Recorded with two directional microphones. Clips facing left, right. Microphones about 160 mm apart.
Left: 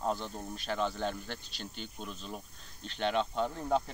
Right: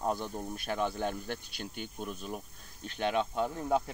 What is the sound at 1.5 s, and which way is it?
Speech, 55° right (ahead or behind).